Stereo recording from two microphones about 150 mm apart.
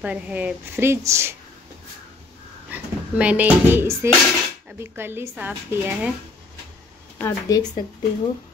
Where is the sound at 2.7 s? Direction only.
10° right (ahead or behind).